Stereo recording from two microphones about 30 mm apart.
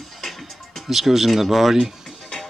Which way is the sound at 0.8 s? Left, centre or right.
Centre.